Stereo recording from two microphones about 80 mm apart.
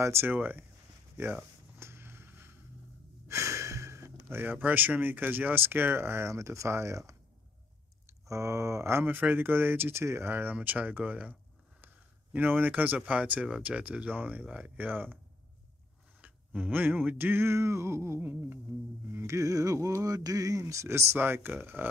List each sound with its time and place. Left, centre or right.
0.0 s speech: right
1.8 s vehicle: right
3.3 s speech: right
8.1 s speech: right
16.2 s speech: centre
19.0 s a sound: right
20.6 s speech: right